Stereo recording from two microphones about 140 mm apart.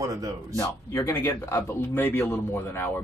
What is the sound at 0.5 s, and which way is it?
Speech, 25° left (ahead or behind).